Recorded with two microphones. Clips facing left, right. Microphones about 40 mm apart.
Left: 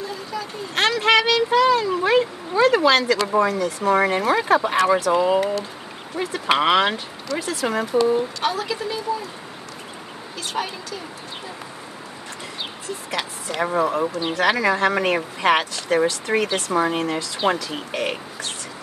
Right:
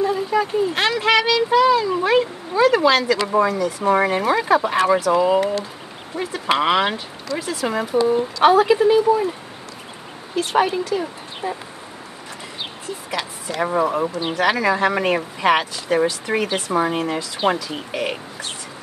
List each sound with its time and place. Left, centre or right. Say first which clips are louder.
0.0 s a sound: right 10 dB; right
0.7 s speech: left 3 dB; centre
2.0 s speech: right 1 dB; centre
7.3 s speech: even; centre
8.4 s a woman's voice: right 11 dB; right
10.3 s speech: right 9 dB; right
13.1 s speech: right 1 dB; centre